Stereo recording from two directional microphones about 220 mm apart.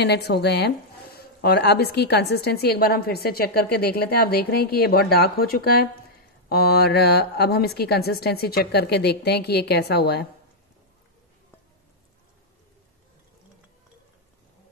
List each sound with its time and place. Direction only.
0.0 s speech: 50° left (ahead or behind)